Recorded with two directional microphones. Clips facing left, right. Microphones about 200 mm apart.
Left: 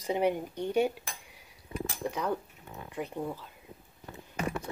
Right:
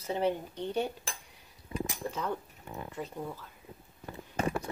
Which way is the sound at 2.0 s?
15° left (ahead or behind).